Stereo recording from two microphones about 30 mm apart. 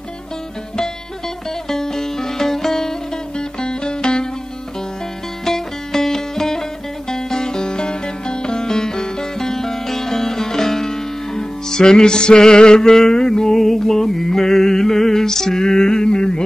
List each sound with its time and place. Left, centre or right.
1.7 s music: centre
3.6 s music: left
5.4 s music: centre